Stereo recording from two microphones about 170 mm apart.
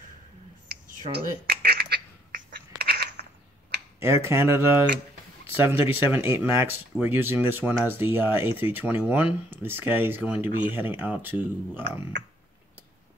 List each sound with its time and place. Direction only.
1.1 s duck: 70° right (ahead or behind)
3.2 s a sound: 65° right (ahead or behind)
4.0 s speech: 15° right (ahead or behind)